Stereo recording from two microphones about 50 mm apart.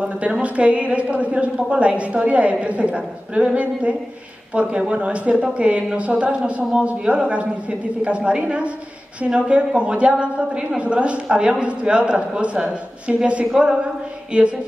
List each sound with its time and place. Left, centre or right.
0.0 s a woman's voice: right
4.6 s a woman's voice: right